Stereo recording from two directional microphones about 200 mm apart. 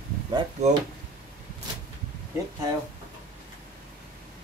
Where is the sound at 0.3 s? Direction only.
25° right (ahead or behind).